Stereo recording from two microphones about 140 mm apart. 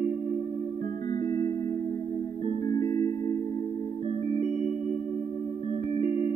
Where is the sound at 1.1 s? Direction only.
30° left (ahead or behind).